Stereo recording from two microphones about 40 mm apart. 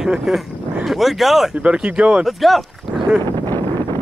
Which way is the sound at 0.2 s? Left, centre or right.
Centre.